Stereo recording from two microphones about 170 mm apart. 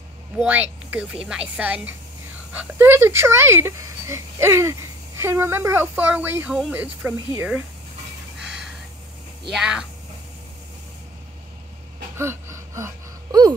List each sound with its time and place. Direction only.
0.4 s speech: 10° right (ahead or behind)
9.5 s speech: 5° right (ahead or behind)
12.2 s a sound: 15° right (ahead or behind)